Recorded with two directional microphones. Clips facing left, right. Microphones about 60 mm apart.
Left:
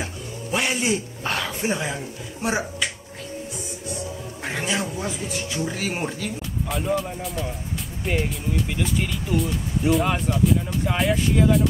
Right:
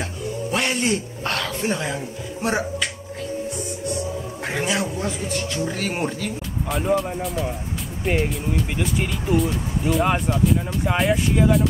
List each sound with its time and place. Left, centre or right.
0.5 s a sound: centre
2.4 s speech: centre
4.5 s a man's voice: centre
8.9 s speech: centre
9.4 s speech: centre
10.0 s speech: centre
10.3 s speech: centre